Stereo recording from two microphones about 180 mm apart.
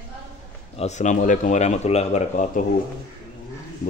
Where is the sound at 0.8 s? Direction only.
40° left (ahead or behind).